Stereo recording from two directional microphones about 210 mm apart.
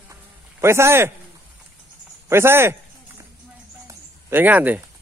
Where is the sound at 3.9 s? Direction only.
10° right (ahead or behind).